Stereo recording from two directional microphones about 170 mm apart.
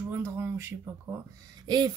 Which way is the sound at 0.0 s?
15° right (ahead or behind).